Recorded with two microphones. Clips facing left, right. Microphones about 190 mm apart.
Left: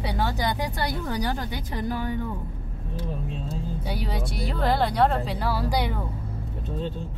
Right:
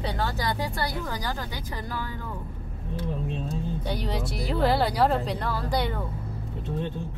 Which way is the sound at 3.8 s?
5° left (ahead or behind).